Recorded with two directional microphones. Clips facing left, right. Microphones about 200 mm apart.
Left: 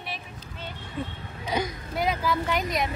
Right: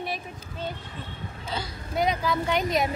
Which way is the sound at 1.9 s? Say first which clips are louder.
Right 1 dB; 20° right (ahead or behind).